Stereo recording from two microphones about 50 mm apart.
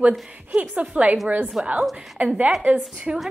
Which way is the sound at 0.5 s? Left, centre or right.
Right.